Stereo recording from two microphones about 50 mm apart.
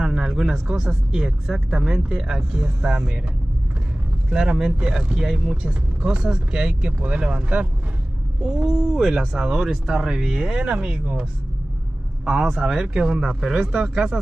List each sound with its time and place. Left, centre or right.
0.0 s speech: centre
4.3 s speech: centre
8.6 s speech: centre
9.7 s speech: centre; by 11.2 s right
12.3 s speech: centre
12.9 s speech: centre